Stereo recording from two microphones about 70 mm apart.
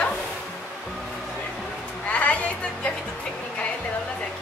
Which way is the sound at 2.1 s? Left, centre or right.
Centre.